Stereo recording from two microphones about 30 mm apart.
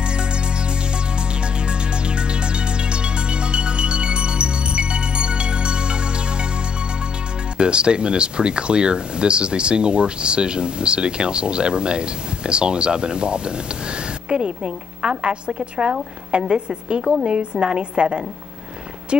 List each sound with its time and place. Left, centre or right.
0.0 s music: right
1.7 s music: right
7.5 s speech: right